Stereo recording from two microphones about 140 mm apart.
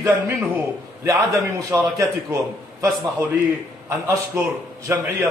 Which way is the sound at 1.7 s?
20° right (ahead or behind).